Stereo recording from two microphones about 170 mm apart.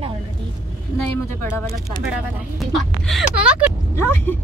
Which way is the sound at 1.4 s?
15° left (ahead or behind).